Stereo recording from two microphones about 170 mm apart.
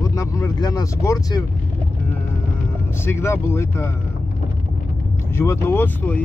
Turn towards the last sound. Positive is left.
turn(degrees=10)  # may be behind; listen again after turning